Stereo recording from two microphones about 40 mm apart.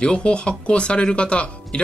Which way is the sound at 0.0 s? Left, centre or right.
Left.